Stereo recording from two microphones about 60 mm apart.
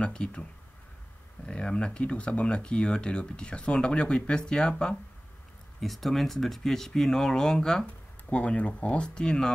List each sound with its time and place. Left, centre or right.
0.0 s speech: centre
5.8 s speech: centre
7.8 s speech: centre